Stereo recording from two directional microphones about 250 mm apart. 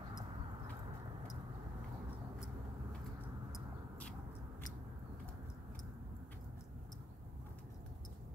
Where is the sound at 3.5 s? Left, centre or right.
Centre.